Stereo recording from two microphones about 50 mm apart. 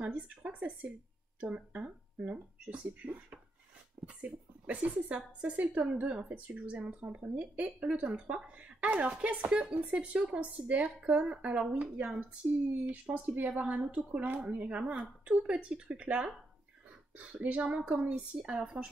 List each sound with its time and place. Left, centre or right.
0.0 s a woman's voice: right